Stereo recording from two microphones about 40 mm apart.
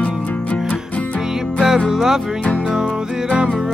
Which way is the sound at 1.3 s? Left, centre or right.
Centre.